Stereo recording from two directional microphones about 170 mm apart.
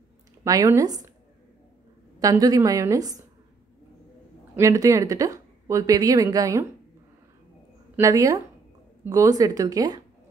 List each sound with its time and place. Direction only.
0.4 s speech: 20° right (ahead or behind)
2.1 s speech: 20° right (ahead or behind)
4.6 s speech: 20° right (ahead or behind)
7.9 s speech: 20° right (ahead or behind)